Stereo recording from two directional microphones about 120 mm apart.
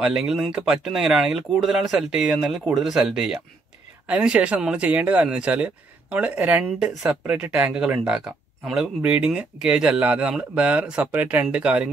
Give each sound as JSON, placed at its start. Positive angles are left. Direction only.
{"t": 0.0, "sound": "speech", "side_deg": -5}